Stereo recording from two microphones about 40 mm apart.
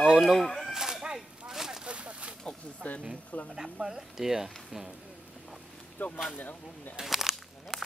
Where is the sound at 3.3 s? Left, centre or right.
Left.